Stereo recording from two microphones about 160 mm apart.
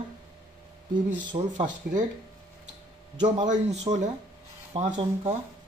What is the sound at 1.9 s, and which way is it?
Speech, 70° right (ahead or behind).